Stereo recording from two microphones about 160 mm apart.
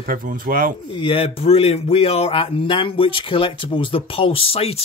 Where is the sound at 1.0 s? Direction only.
35° left (ahead or behind).